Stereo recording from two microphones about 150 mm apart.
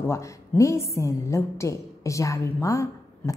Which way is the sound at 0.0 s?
20° left (ahead or behind).